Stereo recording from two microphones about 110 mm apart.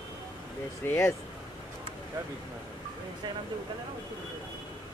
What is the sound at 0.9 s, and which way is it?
Speech, 25° left (ahead or behind).